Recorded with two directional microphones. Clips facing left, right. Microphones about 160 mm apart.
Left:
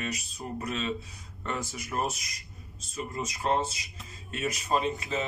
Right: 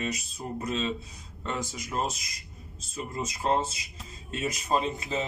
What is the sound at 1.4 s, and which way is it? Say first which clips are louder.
Speech: right 1 dB; 15° right (ahead or behind).